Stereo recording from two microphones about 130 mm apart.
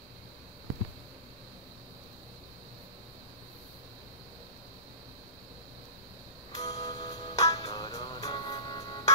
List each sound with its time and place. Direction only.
6.5 s music: 30° left (ahead or behind)